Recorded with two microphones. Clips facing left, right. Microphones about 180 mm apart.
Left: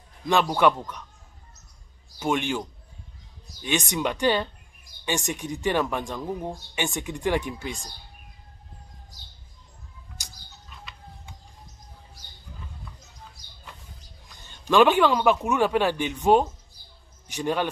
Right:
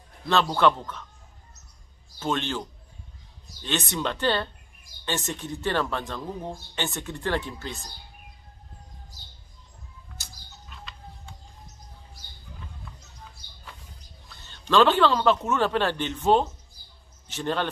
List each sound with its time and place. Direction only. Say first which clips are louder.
0.3 s speech: left 1 dB; 15° left (ahead or behind)
2.1 s speech: left 2 dB; 10° left (ahead or behind)
10.2 s bird: even; 15° left (ahead or behind)
14.3 s speech: left 1 dB; 15° left (ahead or behind)